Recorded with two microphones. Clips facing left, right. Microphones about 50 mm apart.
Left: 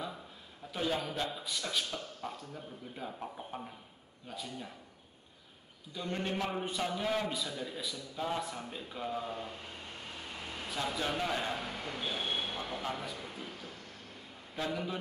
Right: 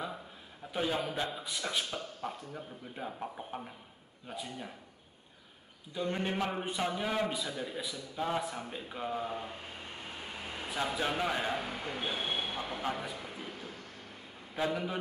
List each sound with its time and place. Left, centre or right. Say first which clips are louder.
0.7 s a man's voice: right 1 dB; centre
5.9 s a man's voice: right 3 dB; centre
10.6 s a man's voice: right 2 dB; centre
14.5 s a man's voice: right 3 dB; centre